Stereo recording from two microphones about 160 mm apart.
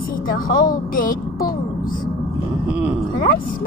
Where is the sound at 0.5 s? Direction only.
60° left (ahead or behind).